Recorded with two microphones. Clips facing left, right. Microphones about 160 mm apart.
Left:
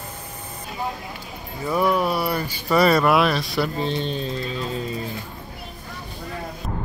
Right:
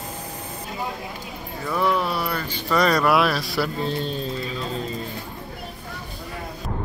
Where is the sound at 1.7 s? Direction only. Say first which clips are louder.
Left 2 dB; 10° left (ahead or behind).